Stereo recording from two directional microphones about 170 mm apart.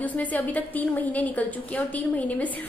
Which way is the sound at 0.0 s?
10° left (ahead or behind).